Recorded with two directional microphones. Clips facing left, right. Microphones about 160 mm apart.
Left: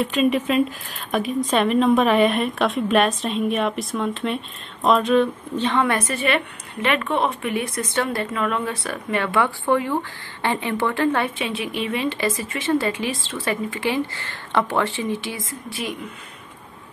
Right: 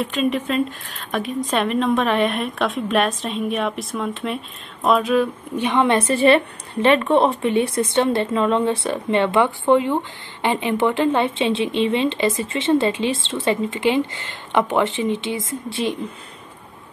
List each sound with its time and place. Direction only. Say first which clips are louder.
0.0 s speech: left 2 dB; centre (ahead or behind); by 16.1 s 30° right (ahead or behind)